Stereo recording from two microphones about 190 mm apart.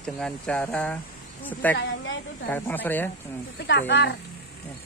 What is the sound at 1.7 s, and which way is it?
Speech, 70° left (ahead or behind).